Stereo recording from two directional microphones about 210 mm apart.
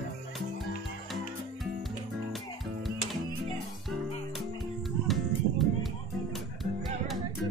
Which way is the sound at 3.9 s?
Centre (ahead or behind).